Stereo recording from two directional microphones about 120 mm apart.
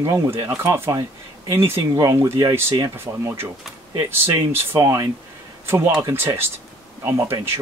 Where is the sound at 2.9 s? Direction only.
20° right (ahead or behind).